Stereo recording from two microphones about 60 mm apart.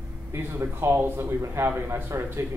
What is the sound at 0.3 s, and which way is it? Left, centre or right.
A man's voice, right.